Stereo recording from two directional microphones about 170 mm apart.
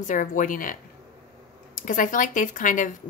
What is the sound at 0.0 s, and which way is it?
Speech, 50° left (ahead or behind).